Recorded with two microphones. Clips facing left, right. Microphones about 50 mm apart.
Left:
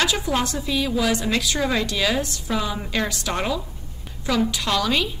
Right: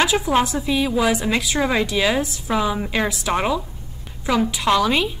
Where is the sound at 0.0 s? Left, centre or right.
Centre.